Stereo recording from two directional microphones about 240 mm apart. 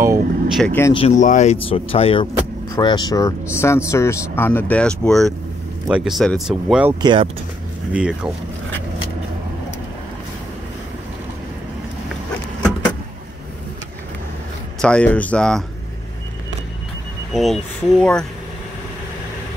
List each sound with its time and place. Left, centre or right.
0.0 s vehicle: centre
0.6 s speech: centre
0.9 s speech: left; by 7.0 s centre
7.0 s speech: centre
7.9 s speech: centre
14.8 s speech: centre
17.3 s speech: centre